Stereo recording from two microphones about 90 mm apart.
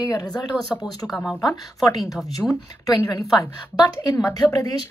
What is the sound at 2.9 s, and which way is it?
A woman's voice, 45° left (ahead or behind).